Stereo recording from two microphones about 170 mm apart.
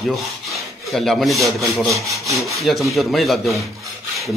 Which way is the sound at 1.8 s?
20° right (ahead or behind).